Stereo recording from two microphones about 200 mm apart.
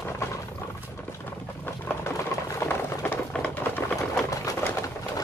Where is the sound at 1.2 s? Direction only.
10° left (ahead or behind).